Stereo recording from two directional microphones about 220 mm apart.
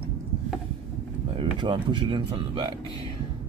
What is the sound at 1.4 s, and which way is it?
Speech, 20° right (ahead or behind).